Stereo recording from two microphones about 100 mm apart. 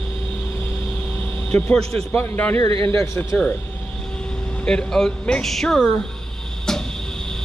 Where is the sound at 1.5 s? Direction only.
15° left (ahead or behind).